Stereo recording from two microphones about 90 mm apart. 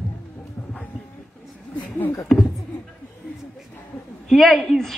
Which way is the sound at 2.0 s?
25° left (ahead or behind).